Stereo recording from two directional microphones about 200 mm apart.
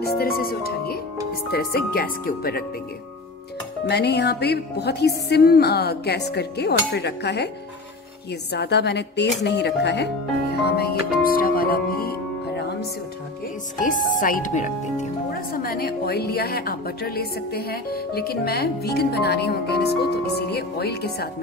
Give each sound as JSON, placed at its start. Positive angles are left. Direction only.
{"t": 0.0, "sound": "speech", "side_deg": 50}
{"t": 3.8, "sound": "speech", "side_deg": 55}
{"t": 8.5, "sound": "speech", "side_deg": 55}
{"t": 13.7, "sound": "speech", "side_deg": 40}